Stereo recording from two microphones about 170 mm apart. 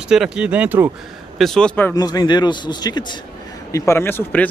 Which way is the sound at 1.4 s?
5° left (ahead or behind).